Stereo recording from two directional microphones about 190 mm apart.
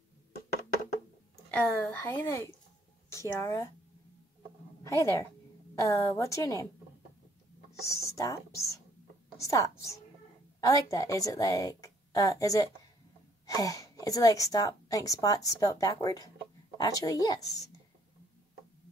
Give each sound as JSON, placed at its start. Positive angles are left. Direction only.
{"t": 1.5, "sound": "a woman's voice", "side_deg": 5}
{"t": 4.8, "sound": "a woman's voice", "side_deg": 15}
{"t": 7.8, "sound": "a woman's voice", "side_deg": 15}
{"t": 9.4, "sound": "a woman's voice", "side_deg": 15}